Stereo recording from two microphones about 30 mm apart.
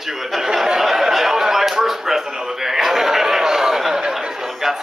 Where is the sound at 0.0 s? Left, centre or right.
Centre.